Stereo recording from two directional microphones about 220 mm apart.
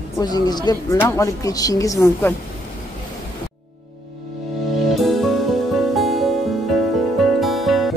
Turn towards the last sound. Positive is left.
turn(degrees=0)  # may be behind; listen again after turning